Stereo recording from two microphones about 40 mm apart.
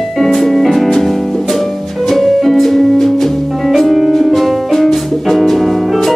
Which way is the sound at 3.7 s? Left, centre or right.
Centre.